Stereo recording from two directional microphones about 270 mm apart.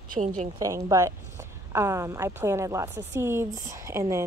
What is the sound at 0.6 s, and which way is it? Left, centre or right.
Speech, centre.